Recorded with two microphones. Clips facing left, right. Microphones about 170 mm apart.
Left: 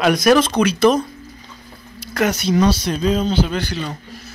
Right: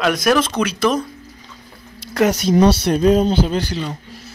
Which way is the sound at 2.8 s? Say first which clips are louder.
Right 5 dB; 50° right (ahead or behind).